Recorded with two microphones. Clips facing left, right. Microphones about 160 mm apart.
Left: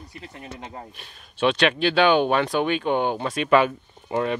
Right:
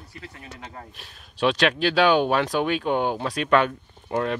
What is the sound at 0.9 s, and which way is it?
Speech, centre (ahead or behind).